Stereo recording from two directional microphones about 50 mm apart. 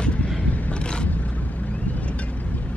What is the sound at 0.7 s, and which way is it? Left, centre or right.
Vehicle, left.